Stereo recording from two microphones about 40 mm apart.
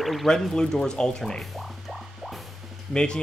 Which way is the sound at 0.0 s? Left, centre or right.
Centre.